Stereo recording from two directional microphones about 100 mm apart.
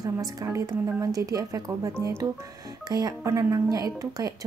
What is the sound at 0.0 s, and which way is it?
Speech, 40° right (ahead or behind).